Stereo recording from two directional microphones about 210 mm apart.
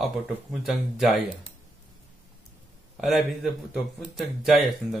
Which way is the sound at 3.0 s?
Centre (ahead or behind).